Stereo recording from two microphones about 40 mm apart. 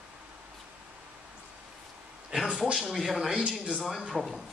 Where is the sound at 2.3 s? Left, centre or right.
Right.